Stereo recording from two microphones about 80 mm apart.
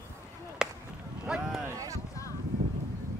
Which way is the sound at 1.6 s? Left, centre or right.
Right.